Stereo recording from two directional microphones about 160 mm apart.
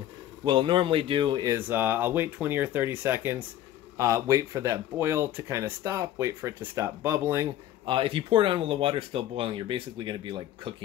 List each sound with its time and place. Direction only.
0.5 s speech: 30° right (ahead or behind)
1.7 s speech: 10° right (ahead or behind)
7.8 s speech: 30° right (ahead or behind)